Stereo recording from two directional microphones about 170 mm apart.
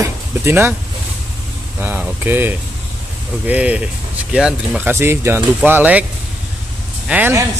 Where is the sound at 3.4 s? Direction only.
10° right (ahead or behind).